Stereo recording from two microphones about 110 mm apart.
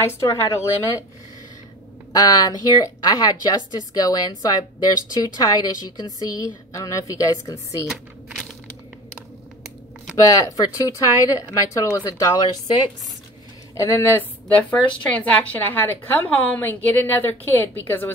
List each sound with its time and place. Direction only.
0.0 s a woman's voice: 25° left (ahead or behind)
2.1 s a woman's voice: 35° left (ahead or behind)
7.9 s typing: centre (ahead or behind)
10.4 s a woman's voice: 35° left (ahead or behind)
13.7 s a woman's voice: 25° left (ahead or behind)
14.6 s a woman's voice: 10° left (ahead or behind)